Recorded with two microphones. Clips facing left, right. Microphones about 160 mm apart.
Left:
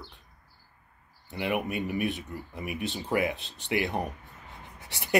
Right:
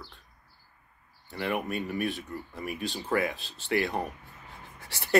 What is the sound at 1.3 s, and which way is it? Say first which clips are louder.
Speech: left 1 dB; 20° left (ahead or behind).